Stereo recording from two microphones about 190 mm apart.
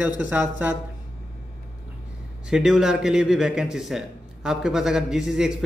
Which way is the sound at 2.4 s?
5° right (ahead or behind).